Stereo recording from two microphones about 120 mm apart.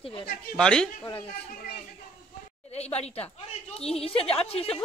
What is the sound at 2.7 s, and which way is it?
A woman's voice, 60° left (ahead or behind).